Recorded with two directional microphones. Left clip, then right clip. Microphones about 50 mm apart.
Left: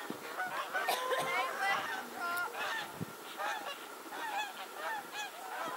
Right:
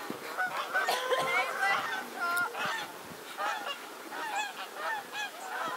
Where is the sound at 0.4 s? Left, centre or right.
Left.